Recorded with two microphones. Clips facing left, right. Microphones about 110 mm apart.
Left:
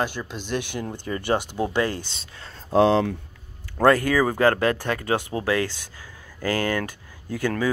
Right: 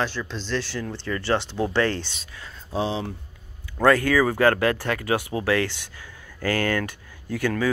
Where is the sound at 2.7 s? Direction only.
70° left (ahead or behind).